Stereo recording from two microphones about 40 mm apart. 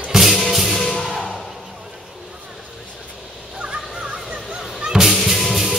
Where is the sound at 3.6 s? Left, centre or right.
Right.